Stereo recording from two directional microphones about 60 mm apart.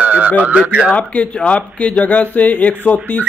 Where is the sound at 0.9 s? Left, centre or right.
Left.